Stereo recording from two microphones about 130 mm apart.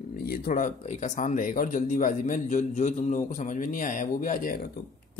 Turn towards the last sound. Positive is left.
turn(degrees=90)